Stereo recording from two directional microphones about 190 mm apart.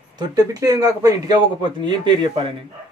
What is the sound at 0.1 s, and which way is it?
Speech, 20° right (ahead or behind).